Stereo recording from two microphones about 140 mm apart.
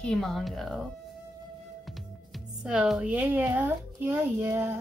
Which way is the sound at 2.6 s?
5° right (ahead or behind).